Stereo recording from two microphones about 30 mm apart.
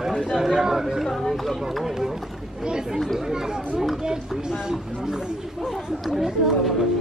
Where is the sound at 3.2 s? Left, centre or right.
Right.